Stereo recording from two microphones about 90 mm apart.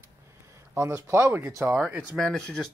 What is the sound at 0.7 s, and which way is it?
Speech, 30° right (ahead or behind).